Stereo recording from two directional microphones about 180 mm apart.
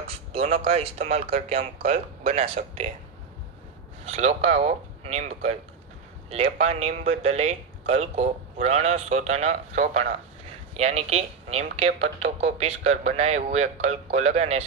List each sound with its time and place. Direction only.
0.3 s speech: 35° right (ahead or behind)
4.0 s speech: 35° right (ahead or behind)